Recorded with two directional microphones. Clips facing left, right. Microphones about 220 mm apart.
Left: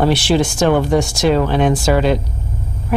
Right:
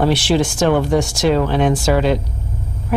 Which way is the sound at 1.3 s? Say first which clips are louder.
Left 1 dB; 20° left (ahead or behind).